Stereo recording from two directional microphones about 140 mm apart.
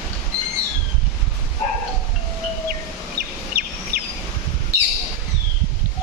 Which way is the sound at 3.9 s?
90° right.